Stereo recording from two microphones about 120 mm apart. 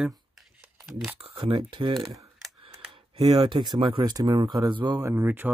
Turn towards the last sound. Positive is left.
turn(degrees=-15)  # may be behind; listen again after turning